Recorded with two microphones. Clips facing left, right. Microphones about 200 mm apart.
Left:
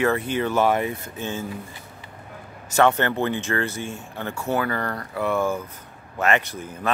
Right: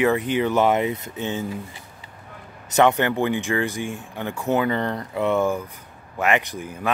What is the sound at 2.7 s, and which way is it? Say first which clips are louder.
Speech: right 1 dB; 15° right (ahead or behind).